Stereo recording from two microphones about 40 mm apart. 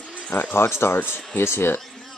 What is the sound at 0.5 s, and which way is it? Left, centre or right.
Speech, left.